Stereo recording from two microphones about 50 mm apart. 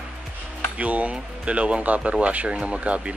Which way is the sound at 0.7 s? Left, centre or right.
Right.